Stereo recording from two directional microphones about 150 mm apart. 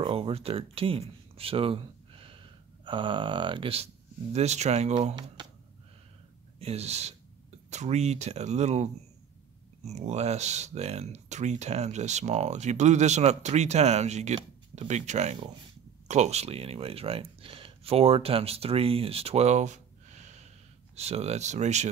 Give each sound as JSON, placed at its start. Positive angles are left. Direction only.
{"t": 0.0, "sound": "speech", "side_deg": -40}
{"t": 6.6, "sound": "speech", "side_deg": -45}